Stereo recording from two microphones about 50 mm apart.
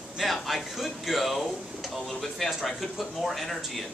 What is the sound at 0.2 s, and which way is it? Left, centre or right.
Speech, centre.